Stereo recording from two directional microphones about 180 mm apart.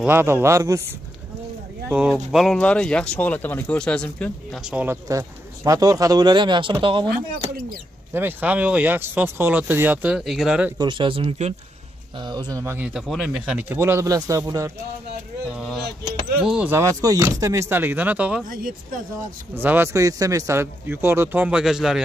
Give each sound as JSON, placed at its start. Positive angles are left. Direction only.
{"t": 0.0, "sound": "speech", "side_deg": -10}
{"t": 1.9, "sound": "speech", "side_deg": -5}
{"t": 4.6, "sound": "speech", "side_deg": -5}
{"t": 5.0, "sound": "speech", "side_deg": -20}
{"t": 8.1, "sound": "speech", "side_deg": -10}
{"t": 10.8, "sound": "speech", "side_deg": -25}
{"t": 15.5, "sound": "a sound", "side_deg": 0}
{"t": 16.4, "sound": "speech", "side_deg": -10}
{"t": 19.5, "sound": "speech", "side_deg": -10}